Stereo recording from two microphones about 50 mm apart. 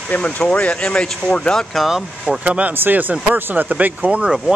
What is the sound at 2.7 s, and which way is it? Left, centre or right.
Speech, right.